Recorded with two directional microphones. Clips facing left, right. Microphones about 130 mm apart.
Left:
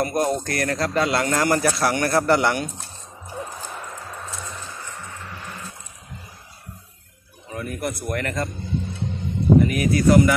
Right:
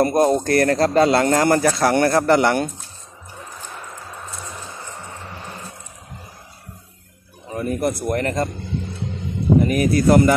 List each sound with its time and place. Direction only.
0.0 s speech: 30° right (ahead or behind)
0.6 s speech: 40° right (ahead or behind)
4.5 s a sound: 25° right (ahead or behind)
7.5 s speech: 30° right (ahead or behind)
9.7 s speech: 35° right (ahead or behind)